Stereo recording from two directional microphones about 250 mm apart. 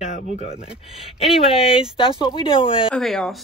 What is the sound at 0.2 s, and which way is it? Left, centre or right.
Speech, left.